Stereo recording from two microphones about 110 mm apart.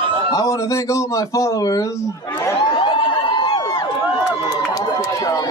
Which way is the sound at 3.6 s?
30° left (ahead or behind).